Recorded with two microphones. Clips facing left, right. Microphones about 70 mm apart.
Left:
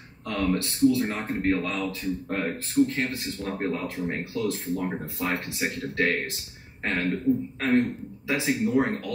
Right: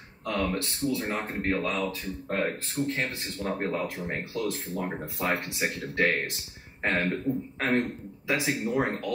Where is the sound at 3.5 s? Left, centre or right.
Centre.